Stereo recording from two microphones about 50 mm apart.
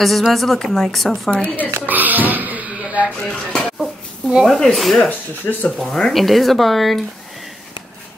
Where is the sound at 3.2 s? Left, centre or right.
Centre.